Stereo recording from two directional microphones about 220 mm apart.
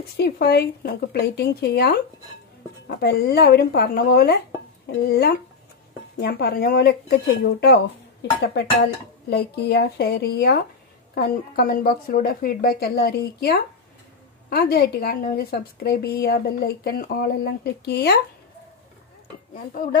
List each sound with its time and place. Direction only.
0.2 s a woman's voice: 45° left (ahead or behind)
19.5 s speech: 40° left (ahead or behind)